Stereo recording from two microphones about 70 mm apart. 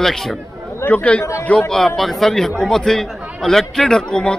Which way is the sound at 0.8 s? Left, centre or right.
Centre.